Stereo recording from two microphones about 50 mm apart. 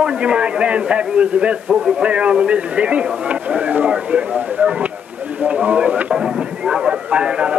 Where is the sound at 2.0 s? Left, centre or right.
Right.